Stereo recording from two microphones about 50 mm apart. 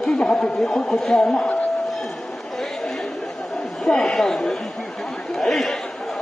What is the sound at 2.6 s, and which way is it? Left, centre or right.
Chatter, centre.